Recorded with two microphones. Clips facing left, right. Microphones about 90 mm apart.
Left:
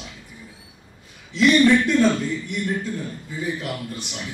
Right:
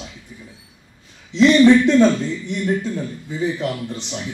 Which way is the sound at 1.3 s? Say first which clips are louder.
Right 4 dB; 25° right (ahead or behind).